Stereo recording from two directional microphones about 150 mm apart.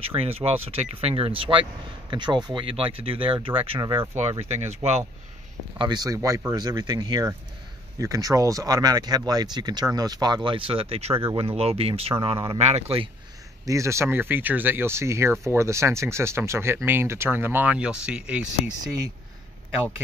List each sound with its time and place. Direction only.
0.1 s speech: 40° right (ahead or behind)
4.5 s speech: 45° right (ahead or behind)
5.8 s speech: 30° right (ahead or behind)
13.7 s speech: 20° right (ahead or behind)